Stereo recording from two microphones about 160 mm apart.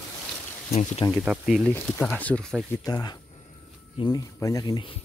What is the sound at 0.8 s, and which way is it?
Speech, 45° left (ahead or behind).